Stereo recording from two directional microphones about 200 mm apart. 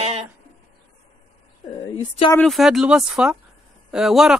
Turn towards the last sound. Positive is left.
turn(degrees=0)  # may be behind; listen again after turning